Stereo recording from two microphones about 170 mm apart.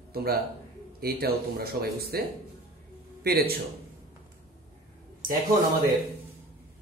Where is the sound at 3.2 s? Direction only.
65° right (ahead or behind).